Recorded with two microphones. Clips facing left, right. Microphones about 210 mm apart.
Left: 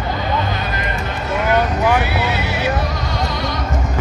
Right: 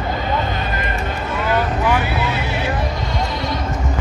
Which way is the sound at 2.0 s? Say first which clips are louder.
Left 1 dB; 80° left.